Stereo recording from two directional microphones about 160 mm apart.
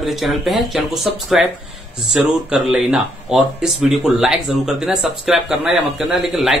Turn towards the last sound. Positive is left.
turn(degrees=0)  # may be behind; listen again after turning